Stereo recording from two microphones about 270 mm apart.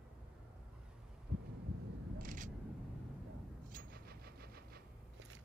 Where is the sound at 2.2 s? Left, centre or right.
Right.